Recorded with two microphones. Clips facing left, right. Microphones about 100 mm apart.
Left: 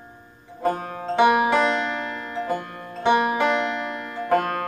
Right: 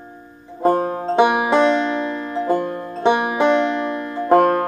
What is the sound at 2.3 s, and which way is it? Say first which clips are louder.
Music: right 8 dB; 30° right (ahead or behind).